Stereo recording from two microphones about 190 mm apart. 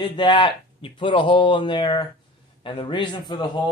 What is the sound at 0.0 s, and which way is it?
Speech, 25° left (ahead or behind).